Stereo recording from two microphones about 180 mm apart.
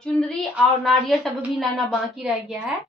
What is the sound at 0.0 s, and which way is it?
A woman's voice, centre (ahead or behind).